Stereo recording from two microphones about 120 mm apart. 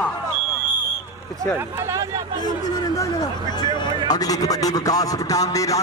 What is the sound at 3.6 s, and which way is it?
Speech, 35° left (ahead or behind).